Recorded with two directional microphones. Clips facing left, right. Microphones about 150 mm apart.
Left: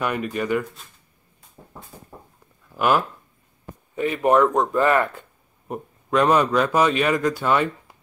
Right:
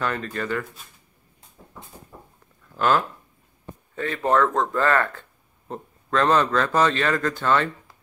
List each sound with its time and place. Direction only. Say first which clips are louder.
0.0 s speech: left 3 dB; 15° left (ahead or behind)
2.7 s speech: left 1 dB; 10° left (ahead or behind)